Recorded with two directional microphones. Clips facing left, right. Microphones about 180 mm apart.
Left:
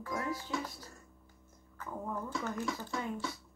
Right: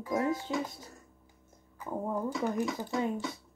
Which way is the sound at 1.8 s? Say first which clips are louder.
Right 6 dB; 30° right (ahead or behind).